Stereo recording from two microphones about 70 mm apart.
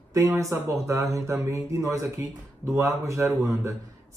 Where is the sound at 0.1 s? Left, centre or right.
Right.